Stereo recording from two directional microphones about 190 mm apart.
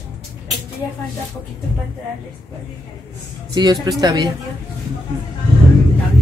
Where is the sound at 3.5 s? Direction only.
20° right (ahead or behind).